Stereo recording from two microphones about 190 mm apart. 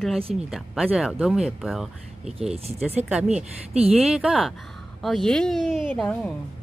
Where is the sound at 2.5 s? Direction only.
35° right (ahead or behind).